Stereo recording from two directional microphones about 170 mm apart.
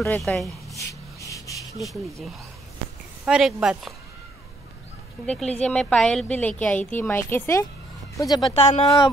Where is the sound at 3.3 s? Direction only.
5° right (ahead or behind).